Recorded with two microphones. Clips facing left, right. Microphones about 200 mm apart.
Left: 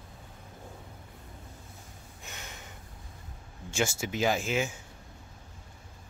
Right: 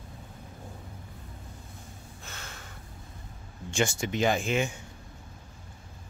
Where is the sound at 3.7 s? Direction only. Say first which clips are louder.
Right 2 dB; 5° left (ahead or behind).